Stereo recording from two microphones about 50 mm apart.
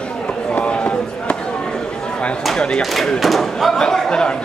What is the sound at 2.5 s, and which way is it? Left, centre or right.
Speech, centre.